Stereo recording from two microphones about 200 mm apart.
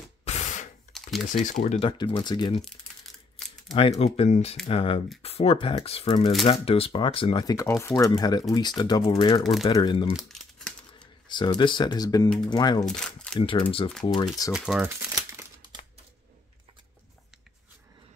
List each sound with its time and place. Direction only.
0.2 s ratchet: 35° left (ahead or behind)
0.9 s typing: centre (ahead or behind)
1.3 s speech: 40° left (ahead or behind); by 2.5 s 20° left (ahead or behind)
3.4 s a sound: 5° left (ahead or behind)
3.7 s speech: 25° left (ahead or behind)
9.4 s speech: centre (ahead or behind)
9.7 s speech: 20° left (ahead or behind)
10.1 s typing: centre (ahead or behind)
11.2 s speech: 20° left (ahead or behind)
12.8 s a sound: 5° left (ahead or behind)
13.4 s speech: 25° left (ahead or behind)
14.5 s crumpling: 5° right (ahead or behind)